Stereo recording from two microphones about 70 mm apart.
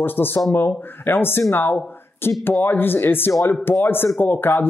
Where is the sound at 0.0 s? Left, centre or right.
Left.